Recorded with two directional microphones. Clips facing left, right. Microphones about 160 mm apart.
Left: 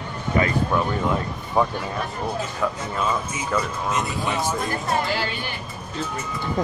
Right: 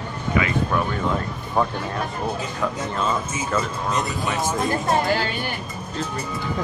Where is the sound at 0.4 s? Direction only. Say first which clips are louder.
Left 1 dB; 40° left (ahead or behind).